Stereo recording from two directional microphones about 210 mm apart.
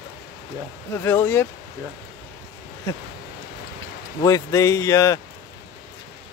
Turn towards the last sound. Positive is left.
turn(degrees=15)  # may be behind; listen again after turning